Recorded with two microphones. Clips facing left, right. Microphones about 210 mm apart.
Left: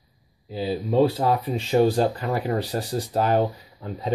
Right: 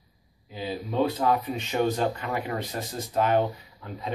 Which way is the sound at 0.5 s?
35° left (ahead or behind).